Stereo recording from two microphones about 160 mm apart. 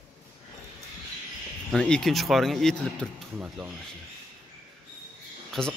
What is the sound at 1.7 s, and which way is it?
A man's voice, 5° left (ahead or behind).